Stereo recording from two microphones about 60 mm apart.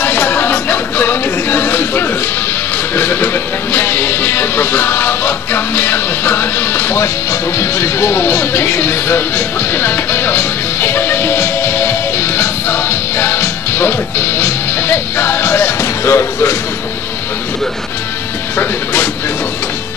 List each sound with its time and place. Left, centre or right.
0.0 s music: left
3.0 s speech: left
3.7 s music: left
7.5 s speech: left
9.8 s music: left